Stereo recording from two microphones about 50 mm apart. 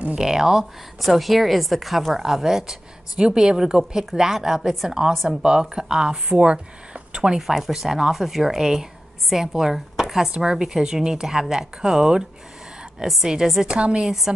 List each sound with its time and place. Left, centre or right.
0.1 s a woman's voice: centre
5.1 s speech: centre
5.4 s a woman's voice: centre
7.3 s a woman's voice: centre
13.7 s a woman's voice: right